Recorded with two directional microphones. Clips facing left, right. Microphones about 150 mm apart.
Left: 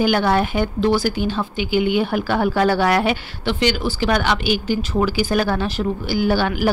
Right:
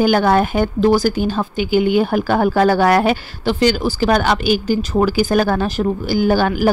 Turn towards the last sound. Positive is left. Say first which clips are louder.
# right 3 dB
turn(degrees=-45)  # may be behind; listen again after turning